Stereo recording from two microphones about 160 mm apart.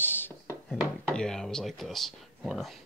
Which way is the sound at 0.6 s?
5° left (ahead or behind).